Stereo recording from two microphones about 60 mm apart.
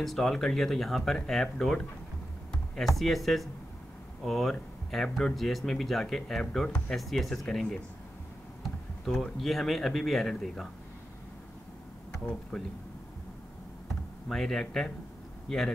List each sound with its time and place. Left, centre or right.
0.0 s speech: centre
3.0 s speech: centre
9.0 s speech: centre
12.5 s speech: centre
14.3 s speech: centre